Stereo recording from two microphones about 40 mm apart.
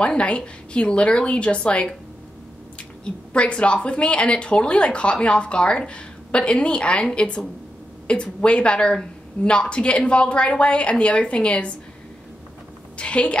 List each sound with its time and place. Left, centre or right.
0.0 s speech: left
3.3 s speech: left
12.9 s a woman's voice: left